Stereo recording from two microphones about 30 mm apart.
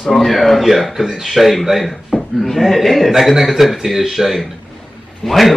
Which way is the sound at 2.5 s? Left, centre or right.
Centre.